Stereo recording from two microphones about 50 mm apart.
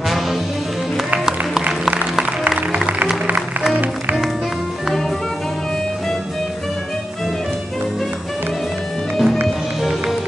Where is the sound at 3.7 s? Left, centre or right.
Right.